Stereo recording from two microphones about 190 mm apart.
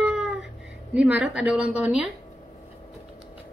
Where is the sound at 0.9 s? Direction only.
5° right (ahead or behind).